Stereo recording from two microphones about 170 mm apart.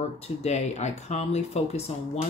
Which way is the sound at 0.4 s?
40° left (ahead or behind).